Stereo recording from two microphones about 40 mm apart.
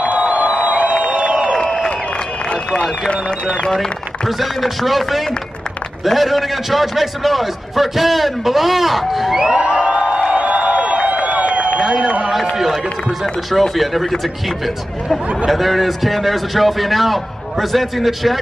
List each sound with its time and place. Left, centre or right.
0.0 s music: right
1.7 s crowd: left
2.7 s speech: left
4.4 s a man's voice: centre
9.6 s music: right
9.9 s music: centre
10.3 s crowd: right
11.8 s a man's voice: centre
13.2 s a man's voice: centre
15.5 s a man's voice: centre